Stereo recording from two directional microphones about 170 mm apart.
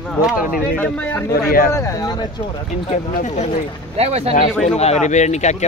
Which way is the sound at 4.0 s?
40° right (ahead or behind).